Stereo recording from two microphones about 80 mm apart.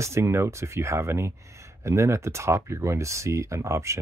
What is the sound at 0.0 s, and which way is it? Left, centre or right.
Speech, right.